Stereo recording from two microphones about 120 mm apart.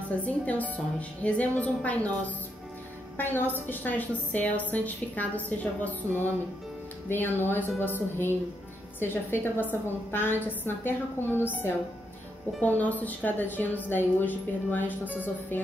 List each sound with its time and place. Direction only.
0.2 s a woman's voice: 10° left (ahead or behind)
12.5 s a woman's voice: 15° left (ahead or behind)